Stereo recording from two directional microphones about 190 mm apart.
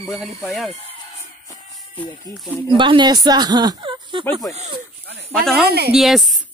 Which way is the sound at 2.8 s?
25° right (ahead or behind).